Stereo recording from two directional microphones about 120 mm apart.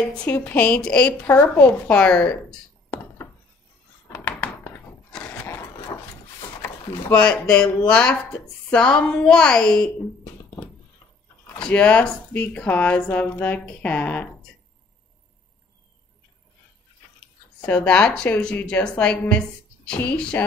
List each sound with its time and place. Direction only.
0.0 s speech: 10° left (ahead or behind)
4.1 s a sound: 15° left (ahead or behind)
6.6 s speech: 20° left (ahead or behind)
11.5 s speech: 10° left (ahead or behind)
17.6 s speech: 10° left (ahead or behind)